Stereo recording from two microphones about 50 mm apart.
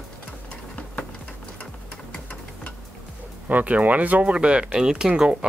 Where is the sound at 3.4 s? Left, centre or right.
Right; by 5.5 s centre.